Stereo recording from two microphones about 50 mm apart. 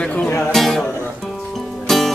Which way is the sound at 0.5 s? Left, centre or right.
Centre.